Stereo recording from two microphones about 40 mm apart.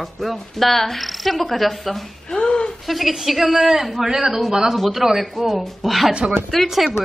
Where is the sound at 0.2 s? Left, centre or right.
Centre.